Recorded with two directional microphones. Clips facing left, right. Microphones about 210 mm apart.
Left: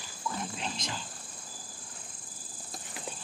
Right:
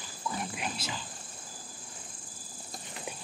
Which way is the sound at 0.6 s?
5° right (ahead or behind).